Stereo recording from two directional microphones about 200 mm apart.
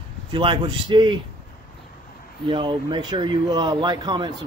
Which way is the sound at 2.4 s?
25° right (ahead or behind).